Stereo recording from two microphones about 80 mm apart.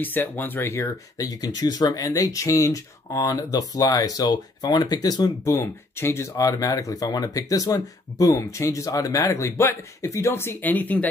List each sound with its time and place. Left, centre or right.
0.0 s speech: left
1.1 s speech: left
5.5 s speech: left
6.3 s speech: left; by 11.1 s centre